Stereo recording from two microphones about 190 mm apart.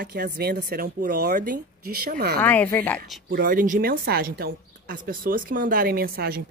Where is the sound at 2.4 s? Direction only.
10° left (ahead or behind).